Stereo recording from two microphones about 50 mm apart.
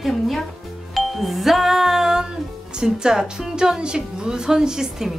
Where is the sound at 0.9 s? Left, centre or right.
Centre.